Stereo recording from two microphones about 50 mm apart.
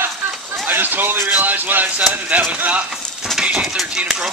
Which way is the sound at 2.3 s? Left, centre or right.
Right.